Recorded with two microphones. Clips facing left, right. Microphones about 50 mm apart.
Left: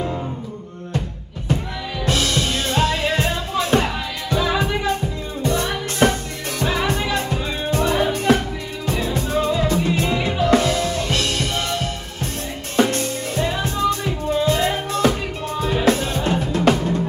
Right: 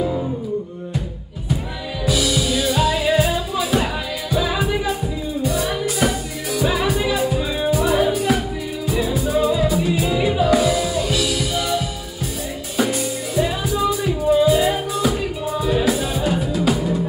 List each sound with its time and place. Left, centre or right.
2.0 s music: left
2.7 s music: centre
11.1 s music: left
11.5 s music: centre
12.8 s music: centre
16.5 s music: left